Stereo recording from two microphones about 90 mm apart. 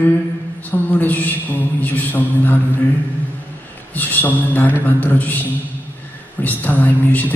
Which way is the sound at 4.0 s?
20° left (ahead or behind).